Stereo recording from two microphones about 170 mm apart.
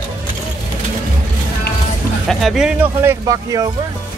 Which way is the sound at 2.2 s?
Centre (ahead or behind).